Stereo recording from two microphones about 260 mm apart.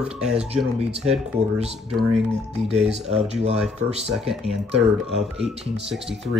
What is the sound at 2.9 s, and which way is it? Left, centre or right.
Speech, right.